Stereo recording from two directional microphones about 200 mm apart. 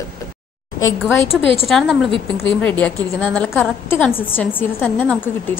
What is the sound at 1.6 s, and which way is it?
A woman's voice, centre (ahead or behind).